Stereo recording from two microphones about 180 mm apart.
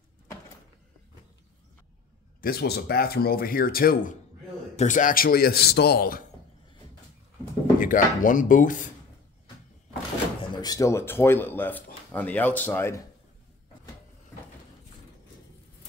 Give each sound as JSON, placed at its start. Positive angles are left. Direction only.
{"t": 2.4, "sound": "speech", "side_deg": 60}
{"t": 7.8, "sound": "speech", "side_deg": 50}
{"t": 10.6, "sound": "speech", "side_deg": 20}